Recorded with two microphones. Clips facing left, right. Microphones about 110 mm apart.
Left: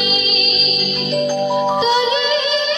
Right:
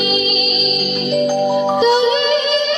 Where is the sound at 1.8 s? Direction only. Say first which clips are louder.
Right 3 dB; 50° right (ahead or behind).